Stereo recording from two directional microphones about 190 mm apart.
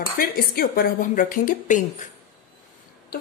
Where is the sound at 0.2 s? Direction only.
50° left (ahead or behind).